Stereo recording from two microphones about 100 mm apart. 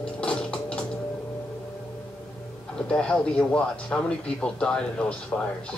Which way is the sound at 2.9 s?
10° left (ahead or behind).